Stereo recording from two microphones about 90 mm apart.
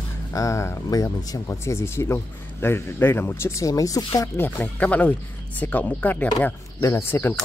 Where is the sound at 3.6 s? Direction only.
40° left (ahead or behind).